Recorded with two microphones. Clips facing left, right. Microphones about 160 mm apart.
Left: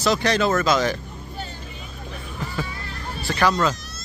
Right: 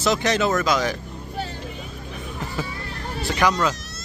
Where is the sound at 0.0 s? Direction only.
20° right (ahead or behind).